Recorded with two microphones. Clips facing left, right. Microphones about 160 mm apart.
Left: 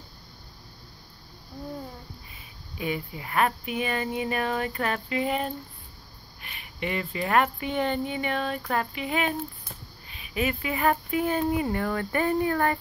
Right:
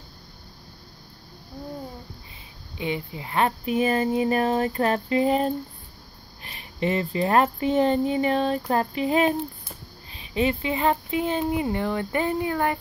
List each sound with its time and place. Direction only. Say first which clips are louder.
2.8 s speech: right 2 dB; 25° right (ahead or behind)